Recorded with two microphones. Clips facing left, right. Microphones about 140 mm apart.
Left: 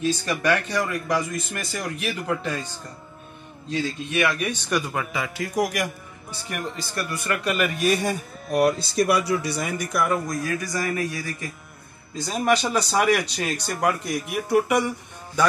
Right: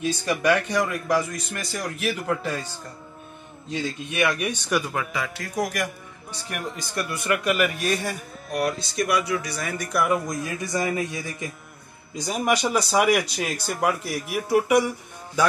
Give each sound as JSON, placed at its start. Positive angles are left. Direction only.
{"t": 0.0, "sound": "a man's voice", "side_deg": -10}
{"t": 4.1, "sound": "a man's voice", "side_deg": -10}
{"t": 6.8, "sound": "a man's voice", "side_deg": -20}
{"t": 7.2, "sound": "a man's voice", "side_deg": -10}
{"t": 7.9, "sound": "a man's voice", "side_deg": 20}
{"t": 8.5, "sound": "speech", "side_deg": 35}
{"t": 9.8, "sound": "a man's voice", "side_deg": 0}
{"t": 10.2, "sound": "a man's voice", "side_deg": -20}